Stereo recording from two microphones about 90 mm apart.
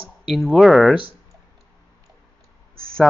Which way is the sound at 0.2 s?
Centre (ahead or behind).